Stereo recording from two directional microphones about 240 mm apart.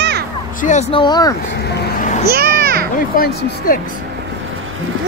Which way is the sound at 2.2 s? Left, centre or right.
Right.